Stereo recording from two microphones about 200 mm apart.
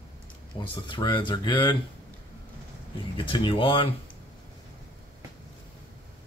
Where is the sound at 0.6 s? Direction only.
25° left (ahead or behind).